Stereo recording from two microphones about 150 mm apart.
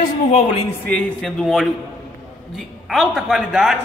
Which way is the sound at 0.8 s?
5° left (ahead or behind).